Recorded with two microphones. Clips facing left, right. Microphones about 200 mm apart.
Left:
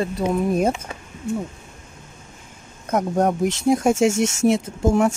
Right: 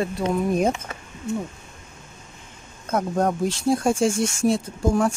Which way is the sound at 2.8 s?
15° left (ahead or behind).